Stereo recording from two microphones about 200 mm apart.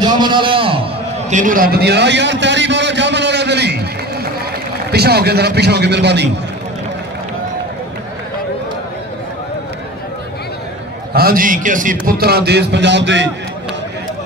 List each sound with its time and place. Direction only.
0.0 s a sound: 20° right (ahead or behind)
1.3 s a man's voice: 40° right (ahead or behind); by 3.7 s 55° right (ahead or behind)
4.9 s a man's voice: 50° right (ahead or behind)
11.1 s a man's voice: 45° right (ahead or behind); by 13.3 s 60° right (ahead or behind)